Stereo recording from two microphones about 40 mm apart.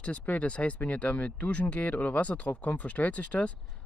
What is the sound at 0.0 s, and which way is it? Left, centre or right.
Speech, left.